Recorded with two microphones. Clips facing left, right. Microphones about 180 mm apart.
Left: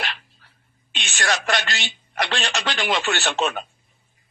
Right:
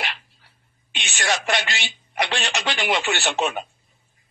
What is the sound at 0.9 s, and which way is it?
A man's voice, 15° right (ahead or behind).